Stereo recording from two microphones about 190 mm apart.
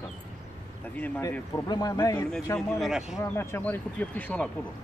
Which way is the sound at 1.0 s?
10° left (ahead or behind).